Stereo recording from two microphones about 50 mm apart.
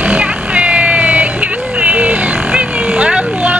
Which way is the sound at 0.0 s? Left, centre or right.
Right.